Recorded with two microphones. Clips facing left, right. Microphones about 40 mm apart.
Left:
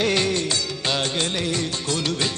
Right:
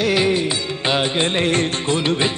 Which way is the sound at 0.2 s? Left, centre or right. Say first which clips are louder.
Right 5 dB; centre.